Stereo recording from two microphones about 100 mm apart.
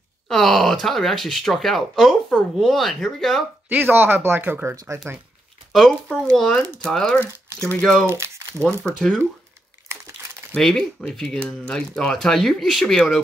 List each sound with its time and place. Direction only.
0.3 s speech: centre (ahead or behind)
3.6 s speech: 20° right (ahead or behind)
5.7 s speech: 5° left (ahead or behind)
8.1 s speech: 25° right (ahead or behind)
8.8 s speech: 10° left (ahead or behind)
10.5 s speech: 5° left (ahead or behind)